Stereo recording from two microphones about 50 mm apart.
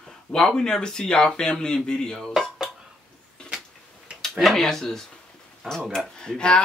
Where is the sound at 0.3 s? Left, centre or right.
Centre.